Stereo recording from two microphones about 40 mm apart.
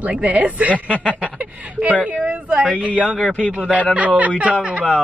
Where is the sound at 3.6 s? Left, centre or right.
Right.